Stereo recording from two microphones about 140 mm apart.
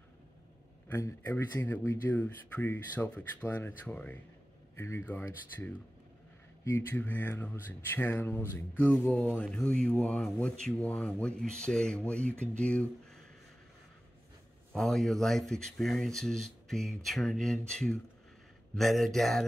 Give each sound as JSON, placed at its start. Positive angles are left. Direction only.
{"t": 0.8, "sound": "speech", "side_deg": 15}
{"t": 14.7, "sound": "speech", "side_deg": 5}